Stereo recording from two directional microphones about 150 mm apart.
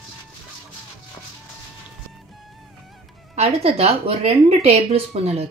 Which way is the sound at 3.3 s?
45° right (ahead or behind).